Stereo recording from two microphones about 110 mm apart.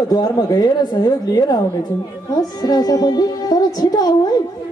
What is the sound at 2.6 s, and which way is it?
A woman's voice, 35° left (ahead or behind).